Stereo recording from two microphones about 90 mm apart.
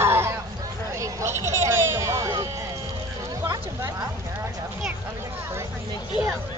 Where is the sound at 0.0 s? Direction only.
30° right (ahead or behind).